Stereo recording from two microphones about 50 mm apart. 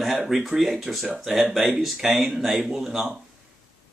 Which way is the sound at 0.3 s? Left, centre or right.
Centre.